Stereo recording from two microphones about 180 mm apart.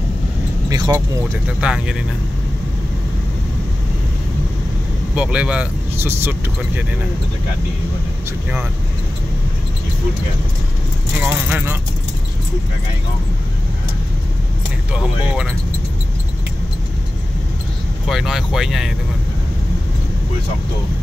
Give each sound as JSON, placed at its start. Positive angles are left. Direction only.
{"t": 0.7, "sound": "speech", "side_deg": -20}
{"t": 0.9, "sound": "speech", "side_deg": -10}
{"t": 5.1, "sound": "speech", "side_deg": -5}
{"t": 11.4, "sound": "speech", "side_deg": -10}
{"t": 14.9, "sound": "speech", "side_deg": -5}
{"t": 18.0, "sound": "speech", "side_deg": 0}